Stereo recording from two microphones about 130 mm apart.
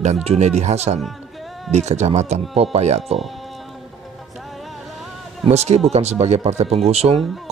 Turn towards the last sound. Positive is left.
turn(degrees=-55)  # may be behind; listen again after turning